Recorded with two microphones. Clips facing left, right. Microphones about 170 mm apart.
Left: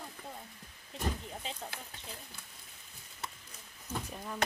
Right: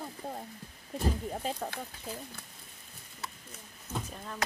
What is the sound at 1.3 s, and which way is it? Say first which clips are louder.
Speech: right 7 dB; 50° right (ahead or behind).